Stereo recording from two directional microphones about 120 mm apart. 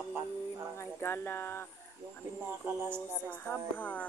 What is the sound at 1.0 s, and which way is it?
Speech, 20° left (ahead or behind).